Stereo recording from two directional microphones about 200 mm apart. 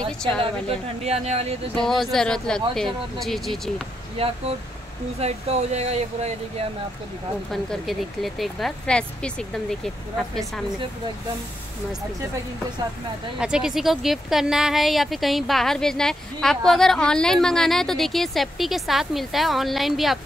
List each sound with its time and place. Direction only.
0.4 s speech: 30° right (ahead or behind)
1.8 s speech: centre (ahead or behind)
4.2 s speech: 30° right (ahead or behind)
7.5 s speech: centre (ahead or behind)
13.4 s speech: 5° right (ahead or behind)